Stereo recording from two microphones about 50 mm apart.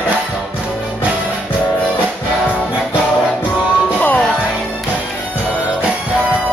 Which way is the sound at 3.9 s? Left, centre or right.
Left.